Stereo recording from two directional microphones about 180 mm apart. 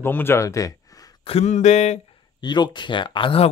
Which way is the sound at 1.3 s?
40° left (ahead or behind).